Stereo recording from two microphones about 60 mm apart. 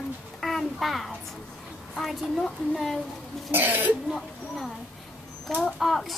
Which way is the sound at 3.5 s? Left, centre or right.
Right.